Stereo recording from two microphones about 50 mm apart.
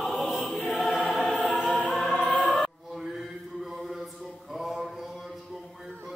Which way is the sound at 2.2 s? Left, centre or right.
Left.